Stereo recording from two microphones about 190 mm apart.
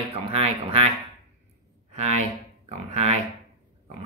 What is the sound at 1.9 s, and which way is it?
Speech, 35° right (ahead or behind).